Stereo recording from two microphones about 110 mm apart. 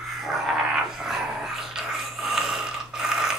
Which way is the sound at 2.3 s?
5° right (ahead or behind).